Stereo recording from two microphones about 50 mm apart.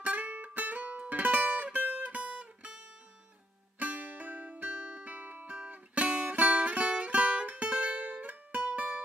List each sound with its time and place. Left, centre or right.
0.0 s music: right
3.8 s music: right
5.0 s music: right